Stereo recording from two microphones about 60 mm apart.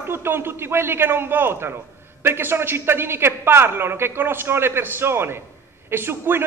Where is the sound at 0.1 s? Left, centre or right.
Right.